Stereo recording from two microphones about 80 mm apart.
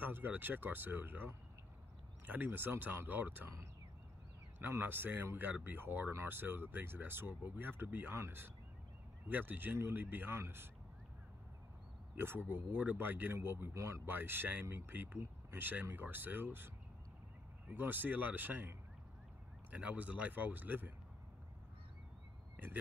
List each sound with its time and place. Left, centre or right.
0.0 s speech: right
4.6 s speech: right
12.2 s speech: right